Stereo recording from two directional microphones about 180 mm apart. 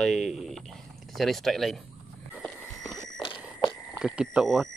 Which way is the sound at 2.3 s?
Centre (ahead or behind).